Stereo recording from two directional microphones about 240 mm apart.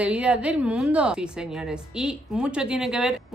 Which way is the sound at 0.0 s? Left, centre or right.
Centre.